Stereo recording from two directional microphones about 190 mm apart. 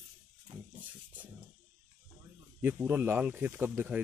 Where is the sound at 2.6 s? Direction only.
10° right (ahead or behind).